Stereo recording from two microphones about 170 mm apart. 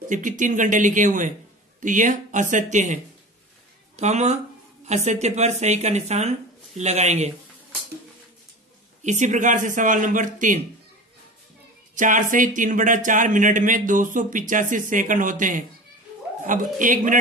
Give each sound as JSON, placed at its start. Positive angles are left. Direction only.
{"t": 0.1, "sound": "speech", "side_deg": -50}
{"t": 9.0, "sound": "speech", "side_deg": -45}
{"t": 11.9, "sound": "speech", "side_deg": -50}